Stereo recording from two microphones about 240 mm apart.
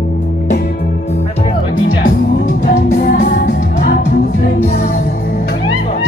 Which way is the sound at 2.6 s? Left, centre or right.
Left.